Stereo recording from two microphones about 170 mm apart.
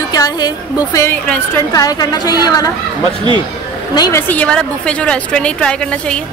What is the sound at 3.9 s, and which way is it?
A woman's voice, 20° left (ahead or behind).